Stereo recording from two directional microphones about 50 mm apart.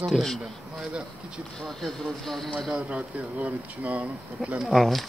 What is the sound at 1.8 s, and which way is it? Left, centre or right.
Speech, centre.